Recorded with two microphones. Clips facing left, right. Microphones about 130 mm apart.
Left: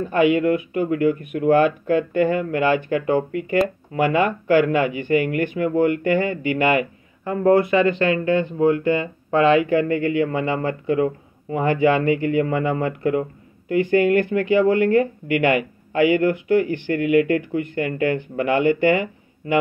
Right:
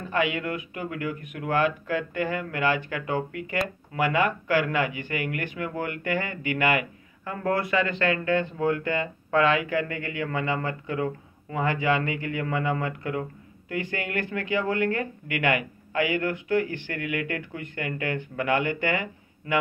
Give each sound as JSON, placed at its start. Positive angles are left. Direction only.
{"t": 0.1, "sound": "speech", "side_deg": 35}